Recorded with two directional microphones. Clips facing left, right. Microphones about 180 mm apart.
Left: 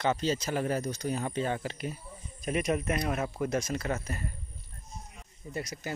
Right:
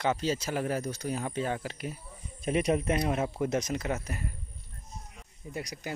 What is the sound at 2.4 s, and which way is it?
Speech, 25° right (ahead or behind).